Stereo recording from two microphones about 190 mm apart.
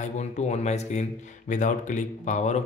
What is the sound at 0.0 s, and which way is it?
Speech, 35° left (ahead or behind).